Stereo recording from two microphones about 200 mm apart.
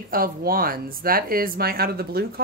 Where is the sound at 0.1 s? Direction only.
45° right (ahead or behind).